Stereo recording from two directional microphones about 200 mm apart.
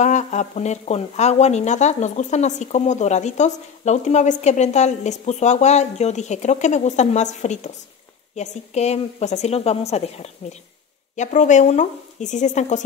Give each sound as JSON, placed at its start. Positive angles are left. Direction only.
{"t": 0.0, "sound": "speech", "side_deg": 35}